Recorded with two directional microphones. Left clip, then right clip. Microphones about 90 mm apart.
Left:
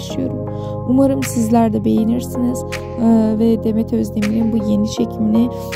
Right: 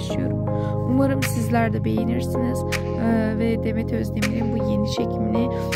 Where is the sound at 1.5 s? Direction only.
30° left (ahead or behind).